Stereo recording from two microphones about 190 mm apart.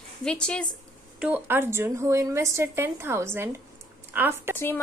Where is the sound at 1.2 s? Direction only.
10° right (ahead or behind).